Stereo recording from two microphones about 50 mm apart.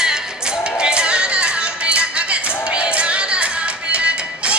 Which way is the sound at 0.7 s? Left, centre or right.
Centre.